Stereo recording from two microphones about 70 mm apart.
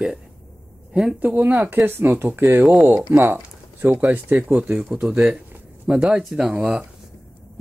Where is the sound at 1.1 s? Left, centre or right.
Right.